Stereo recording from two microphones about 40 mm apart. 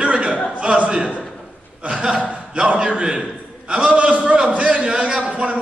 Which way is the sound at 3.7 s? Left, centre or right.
Right.